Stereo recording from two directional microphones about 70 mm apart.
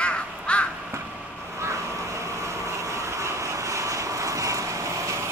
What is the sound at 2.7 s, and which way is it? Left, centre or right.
Vehicle, right.